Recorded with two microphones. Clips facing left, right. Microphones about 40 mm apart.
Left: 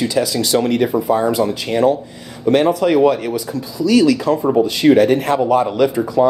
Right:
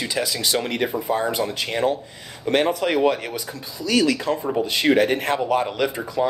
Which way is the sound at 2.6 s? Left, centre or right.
Left.